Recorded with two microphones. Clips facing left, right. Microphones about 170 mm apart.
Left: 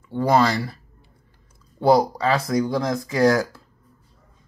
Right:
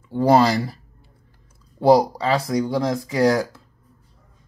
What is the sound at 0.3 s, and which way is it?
Speech, 35° right (ahead or behind).